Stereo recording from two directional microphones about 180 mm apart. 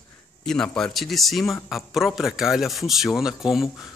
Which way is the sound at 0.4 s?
5° left (ahead or behind).